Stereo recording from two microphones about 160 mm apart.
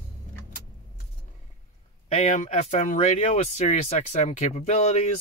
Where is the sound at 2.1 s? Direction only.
45° left (ahead or behind).